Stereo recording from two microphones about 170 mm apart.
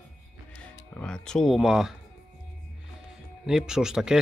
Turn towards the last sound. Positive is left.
turn(degrees=-5)  # may be behind; listen again after turning